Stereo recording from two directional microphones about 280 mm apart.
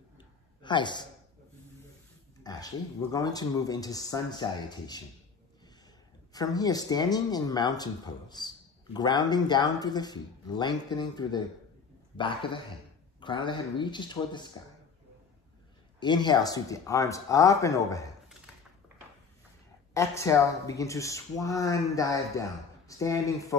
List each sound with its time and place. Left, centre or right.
0.6 s a man's voice: centre
2.4 s speech: centre
6.3 s speech: centre
16.0 s speech: centre
19.9 s speech: centre